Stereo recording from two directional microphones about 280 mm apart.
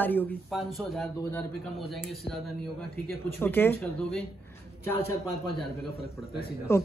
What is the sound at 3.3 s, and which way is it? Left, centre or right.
Speech, centre.